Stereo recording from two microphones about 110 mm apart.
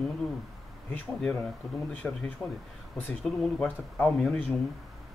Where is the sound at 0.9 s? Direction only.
15° left (ahead or behind).